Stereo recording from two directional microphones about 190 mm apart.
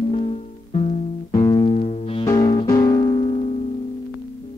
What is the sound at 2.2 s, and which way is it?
Music, 20° left (ahead or behind).